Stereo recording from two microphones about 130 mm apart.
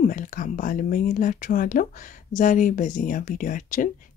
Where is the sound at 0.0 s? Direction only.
85° left.